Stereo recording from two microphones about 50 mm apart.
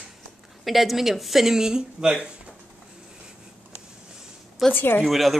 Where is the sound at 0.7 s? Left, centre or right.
Centre.